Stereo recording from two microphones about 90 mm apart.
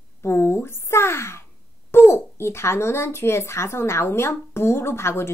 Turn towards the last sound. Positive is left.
turn(degrees=30)  # may be behind; listen again after turning